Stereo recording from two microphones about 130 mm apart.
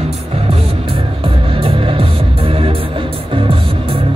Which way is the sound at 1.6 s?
45° right (ahead or behind).